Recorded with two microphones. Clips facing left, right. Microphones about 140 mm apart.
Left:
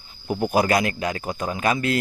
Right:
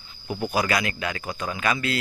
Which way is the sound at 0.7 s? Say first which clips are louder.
Left 4 dB; 45° left (ahead or behind).